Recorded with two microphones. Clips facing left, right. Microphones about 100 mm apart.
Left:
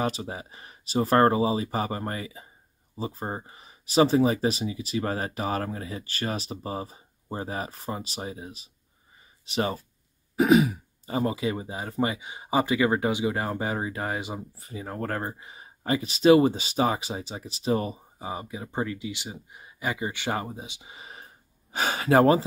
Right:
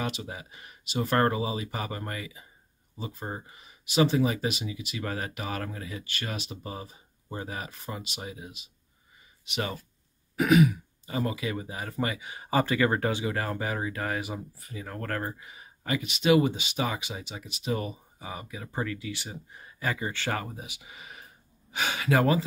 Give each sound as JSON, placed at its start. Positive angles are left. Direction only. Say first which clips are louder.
{"t": 0.0, "sound": "speech", "louder": "left 5 dB", "side_deg": 35}